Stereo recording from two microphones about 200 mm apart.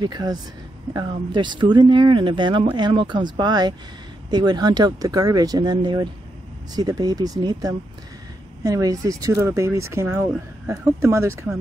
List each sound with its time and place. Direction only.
0.0 s speech: 20° right (ahead or behind)